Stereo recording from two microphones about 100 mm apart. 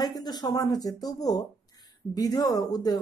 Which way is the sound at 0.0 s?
40° left (ahead or behind).